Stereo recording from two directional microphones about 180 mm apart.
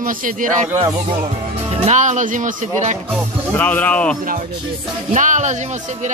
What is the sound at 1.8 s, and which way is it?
Speech, 40° right (ahead or behind).